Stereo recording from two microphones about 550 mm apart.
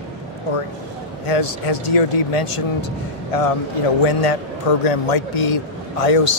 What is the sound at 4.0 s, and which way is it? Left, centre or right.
A man's voice, left.